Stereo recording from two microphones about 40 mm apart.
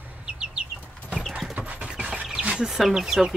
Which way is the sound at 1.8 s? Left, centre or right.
Right.